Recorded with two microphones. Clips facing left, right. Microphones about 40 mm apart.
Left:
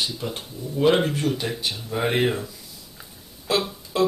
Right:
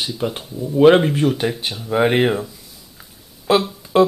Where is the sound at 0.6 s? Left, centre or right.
Right.